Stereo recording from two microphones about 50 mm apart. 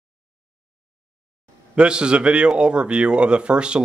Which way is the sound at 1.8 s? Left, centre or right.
Centre.